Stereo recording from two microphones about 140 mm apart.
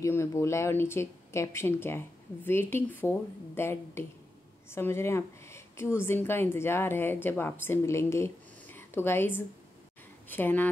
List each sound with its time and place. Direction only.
0.0 s a woman's voice: 20° left (ahead or behind)